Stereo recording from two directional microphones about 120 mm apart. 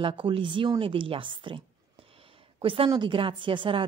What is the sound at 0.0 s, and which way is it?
A woman's voice, 45° right (ahead or behind).